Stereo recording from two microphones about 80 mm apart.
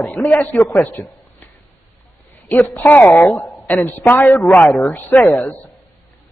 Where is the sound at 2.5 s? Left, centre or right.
Left.